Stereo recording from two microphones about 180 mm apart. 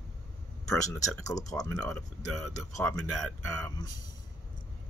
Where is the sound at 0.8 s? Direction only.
20° left (ahead or behind).